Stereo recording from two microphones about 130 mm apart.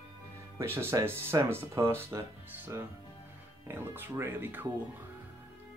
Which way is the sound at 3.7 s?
15° right (ahead or behind).